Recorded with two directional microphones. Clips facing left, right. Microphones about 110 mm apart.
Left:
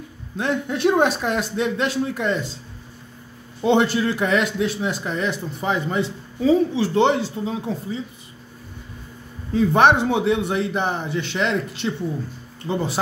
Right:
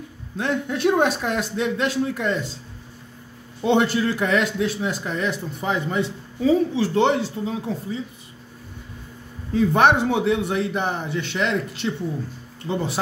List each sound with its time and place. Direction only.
0.4 s speech: 20° left (ahead or behind)
3.6 s speech: 30° left (ahead or behind)
9.5 s speech: 25° left (ahead or behind)